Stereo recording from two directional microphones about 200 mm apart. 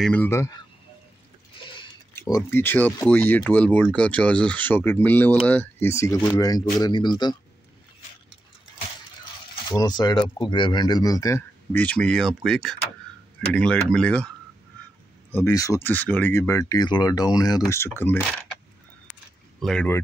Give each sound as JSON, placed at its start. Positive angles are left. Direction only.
{"t": 0.0, "sound": "speech", "side_deg": 10}
{"t": 2.3, "sound": "speech", "side_deg": 10}
{"t": 9.7, "sound": "speech", "side_deg": 20}
{"t": 15.3, "sound": "speech", "side_deg": 15}
{"t": 19.6, "sound": "speech", "side_deg": 5}